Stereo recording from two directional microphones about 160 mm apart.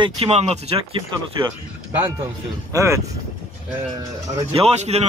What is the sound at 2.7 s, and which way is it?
Speech, 20° right (ahead or behind).